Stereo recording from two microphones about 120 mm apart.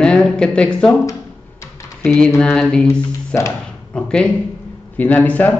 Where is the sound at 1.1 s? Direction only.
25° left (ahead or behind).